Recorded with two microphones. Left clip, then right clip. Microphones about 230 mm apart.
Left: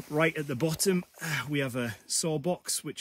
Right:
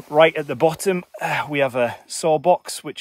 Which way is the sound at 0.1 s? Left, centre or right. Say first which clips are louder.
Right 13 dB; centre.